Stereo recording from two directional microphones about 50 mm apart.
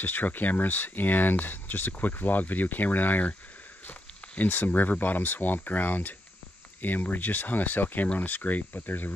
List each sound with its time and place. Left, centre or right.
0.0 s speech: left
4.4 s speech: left